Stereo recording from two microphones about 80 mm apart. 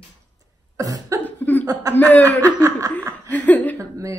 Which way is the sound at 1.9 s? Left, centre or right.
Left.